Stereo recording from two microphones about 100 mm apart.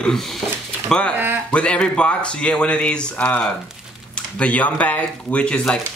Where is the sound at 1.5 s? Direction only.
10° left (ahead or behind).